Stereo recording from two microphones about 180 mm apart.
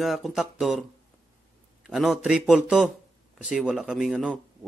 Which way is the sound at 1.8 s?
Centre (ahead or behind).